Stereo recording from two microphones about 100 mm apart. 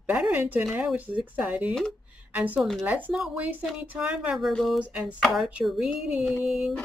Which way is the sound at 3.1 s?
5° right (ahead or behind).